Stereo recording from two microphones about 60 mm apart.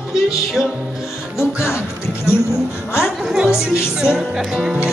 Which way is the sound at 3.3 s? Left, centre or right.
Centre.